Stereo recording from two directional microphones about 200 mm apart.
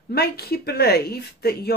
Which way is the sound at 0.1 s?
50° left (ahead or behind).